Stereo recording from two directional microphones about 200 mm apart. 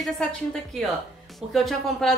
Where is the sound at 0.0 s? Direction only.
5° left (ahead or behind).